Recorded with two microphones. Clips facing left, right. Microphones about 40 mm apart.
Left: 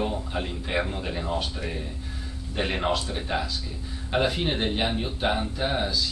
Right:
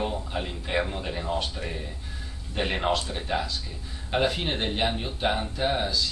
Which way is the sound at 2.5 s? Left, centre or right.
Centre.